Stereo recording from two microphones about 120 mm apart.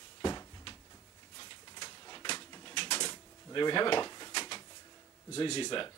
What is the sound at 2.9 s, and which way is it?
Drawer open or close, 40° left (ahead or behind).